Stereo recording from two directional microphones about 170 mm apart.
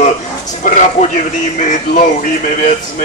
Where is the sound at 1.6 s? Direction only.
50° left (ahead or behind).